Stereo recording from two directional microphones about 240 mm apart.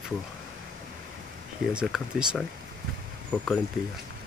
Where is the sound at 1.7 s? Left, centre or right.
Centre.